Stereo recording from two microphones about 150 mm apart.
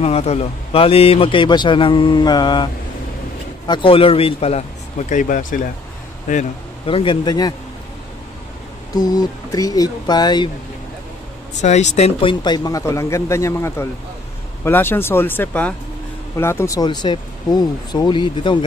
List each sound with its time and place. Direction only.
0.0 s a man's voice: 45° left (ahead or behind)
6.9 s a man's voice: 35° left (ahead or behind)
8.9 s speech: 25° left (ahead or behind)
11.6 s speech: 50° left (ahead or behind)
12.3 s speech: 30° left (ahead or behind)